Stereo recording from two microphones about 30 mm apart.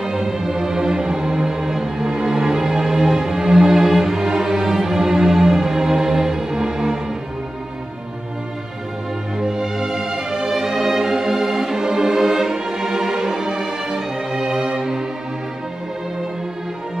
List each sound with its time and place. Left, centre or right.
0.0 s music: centre
4.2 s music: right
9.4 s music: centre